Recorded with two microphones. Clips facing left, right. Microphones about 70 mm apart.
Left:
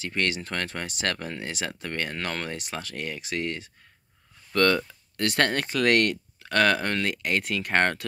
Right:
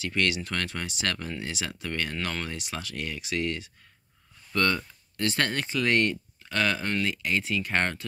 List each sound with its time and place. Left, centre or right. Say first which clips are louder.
0.0 s speech: right 1 dB; left
4.5 s speech: left 4 dB; left